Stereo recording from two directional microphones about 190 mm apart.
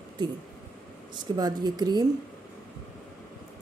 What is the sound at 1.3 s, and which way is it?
Speech, 20° right (ahead or behind).